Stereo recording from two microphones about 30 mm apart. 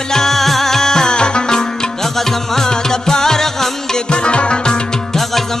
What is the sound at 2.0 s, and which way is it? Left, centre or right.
Music, centre.